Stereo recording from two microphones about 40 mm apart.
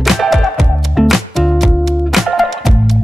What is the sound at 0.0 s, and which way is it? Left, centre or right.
Music, centre.